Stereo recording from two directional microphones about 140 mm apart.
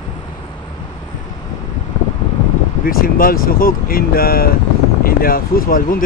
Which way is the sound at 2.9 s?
90° left.